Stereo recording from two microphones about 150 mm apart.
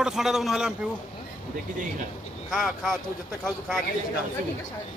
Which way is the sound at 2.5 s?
Centre (ahead or behind).